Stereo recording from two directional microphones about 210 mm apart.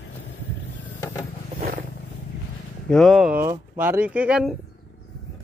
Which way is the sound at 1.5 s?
40° right (ahead or behind).